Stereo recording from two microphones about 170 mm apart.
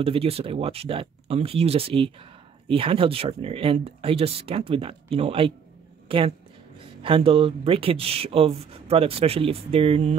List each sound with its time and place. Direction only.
0.0 s speech: 35° right (ahead or behind)